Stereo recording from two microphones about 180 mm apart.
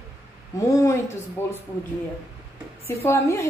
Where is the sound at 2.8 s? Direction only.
15° left (ahead or behind).